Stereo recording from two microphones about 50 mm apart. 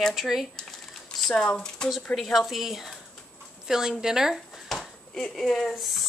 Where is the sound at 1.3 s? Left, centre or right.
Centre.